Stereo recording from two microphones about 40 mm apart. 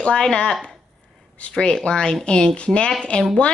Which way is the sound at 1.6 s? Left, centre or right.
Left.